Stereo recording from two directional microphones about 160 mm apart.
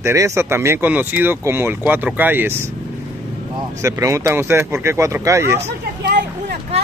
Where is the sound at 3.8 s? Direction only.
20° right (ahead or behind).